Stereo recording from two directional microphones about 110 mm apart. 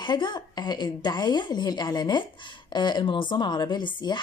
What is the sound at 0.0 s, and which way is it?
A woman's voice, 45° left (ahead or behind).